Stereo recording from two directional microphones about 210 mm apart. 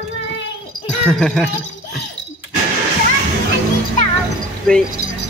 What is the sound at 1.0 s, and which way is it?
Speech, 5° left (ahead or behind).